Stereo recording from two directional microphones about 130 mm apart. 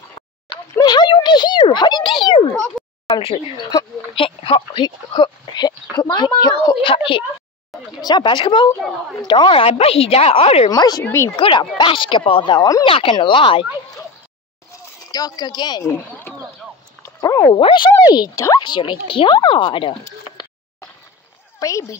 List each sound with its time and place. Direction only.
0.7 s a sound: 35° left (ahead or behind)
3.1 s speech: 45° left (ahead or behind)
8.0 s a woman's voice: 35° left (ahead or behind); by 10.7 s 50° left (ahead or behind)
10.7 s speech: 30° left (ahead or behind)
11.1 s speech: 20° left (ahead or behind)
11.3 s speech: 40° left (ahead or behind)
12.8 s a woman's voice: 45° left (ahead or behind)
15.0 s speech: 30° left (ahead or behind)
15.8 s speech: 15° left (ahead or behind)
17.0 s a sound: 25° left (ahead or behind)
17.6 s speech: 40° left (ahead or behind)
18.1 s speech: 30° left (ahead or behind)
21.5 s speech: 25° left (ahead or behind)